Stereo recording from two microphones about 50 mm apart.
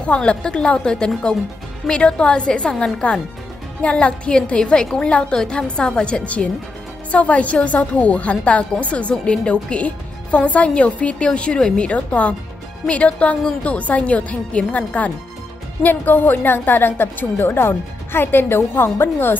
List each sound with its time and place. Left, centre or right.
0.0 s a woman's voice: left
15.8 s a woman's voice: left